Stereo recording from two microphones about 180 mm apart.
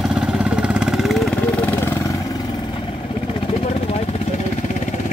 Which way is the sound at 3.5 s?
35° left (ahead or behind).